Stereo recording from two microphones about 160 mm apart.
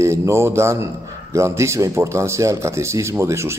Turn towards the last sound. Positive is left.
turn(degrees=-15)  # may be behind; listen again after turning